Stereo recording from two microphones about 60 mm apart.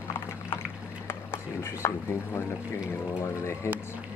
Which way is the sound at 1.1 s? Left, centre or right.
Left.